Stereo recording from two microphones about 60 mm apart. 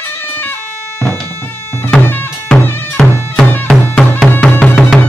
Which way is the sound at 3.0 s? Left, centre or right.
Centre.